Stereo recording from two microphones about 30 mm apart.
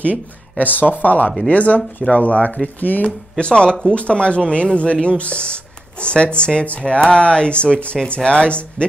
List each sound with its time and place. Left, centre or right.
0.0 s speech: left
0.8 s speech: left
2.8 s speech: left
3.3 s speech: left